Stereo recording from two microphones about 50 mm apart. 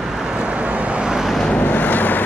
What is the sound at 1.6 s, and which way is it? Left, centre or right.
Vehicle, left.